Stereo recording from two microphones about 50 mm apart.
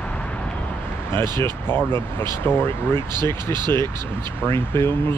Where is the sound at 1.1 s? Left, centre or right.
Left.